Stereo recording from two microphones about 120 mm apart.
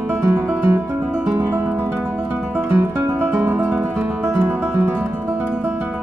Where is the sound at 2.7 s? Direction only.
20° right (ahead or behind).